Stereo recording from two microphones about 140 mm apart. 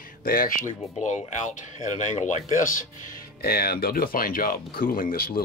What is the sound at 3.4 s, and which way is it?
Speech, 90° left.